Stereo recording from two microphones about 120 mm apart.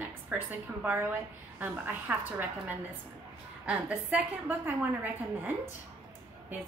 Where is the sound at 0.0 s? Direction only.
15° right (ahead or behind).